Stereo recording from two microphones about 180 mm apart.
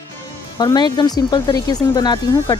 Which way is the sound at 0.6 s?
20° left (ahead or behind).